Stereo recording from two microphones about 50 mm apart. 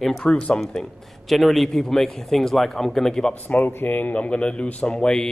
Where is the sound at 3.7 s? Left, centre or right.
Left.